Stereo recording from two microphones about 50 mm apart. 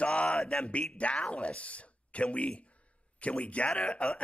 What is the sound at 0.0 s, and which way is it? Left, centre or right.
Mantra, left.